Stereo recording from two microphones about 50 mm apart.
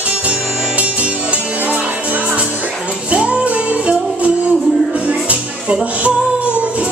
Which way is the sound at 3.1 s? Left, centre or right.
Right.